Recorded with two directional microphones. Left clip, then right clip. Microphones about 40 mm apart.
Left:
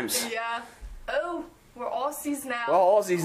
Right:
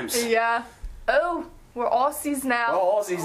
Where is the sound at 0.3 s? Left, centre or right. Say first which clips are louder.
Right 9 dB; centre.